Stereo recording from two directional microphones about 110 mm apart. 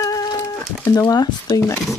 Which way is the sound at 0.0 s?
30° left (ahead or behind).